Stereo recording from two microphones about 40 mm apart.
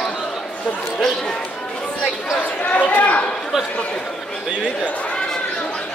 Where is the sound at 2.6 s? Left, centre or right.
Left.